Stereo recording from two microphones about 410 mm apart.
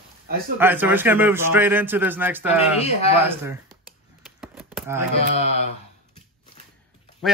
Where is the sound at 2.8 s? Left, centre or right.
Centre.